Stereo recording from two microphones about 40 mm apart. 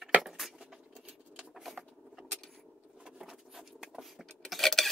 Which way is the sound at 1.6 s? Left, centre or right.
Centre.